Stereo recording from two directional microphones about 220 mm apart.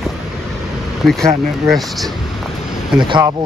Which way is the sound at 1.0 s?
Centre (ahead or behind).